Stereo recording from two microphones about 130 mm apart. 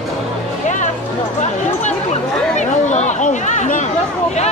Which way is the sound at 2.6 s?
65° left (ahead or behind).